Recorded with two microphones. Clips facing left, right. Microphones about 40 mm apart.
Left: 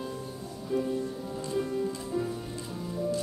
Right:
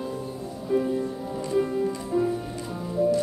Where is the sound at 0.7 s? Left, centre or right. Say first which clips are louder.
Right 5 dB; centre.